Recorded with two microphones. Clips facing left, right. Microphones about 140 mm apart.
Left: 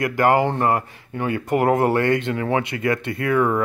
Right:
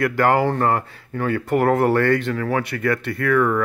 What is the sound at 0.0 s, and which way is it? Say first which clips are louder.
Speech: even; 15° left (ahead or behind).